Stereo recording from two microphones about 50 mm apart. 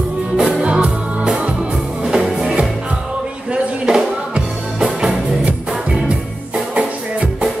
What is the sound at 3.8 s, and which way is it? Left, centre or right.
Music, centre.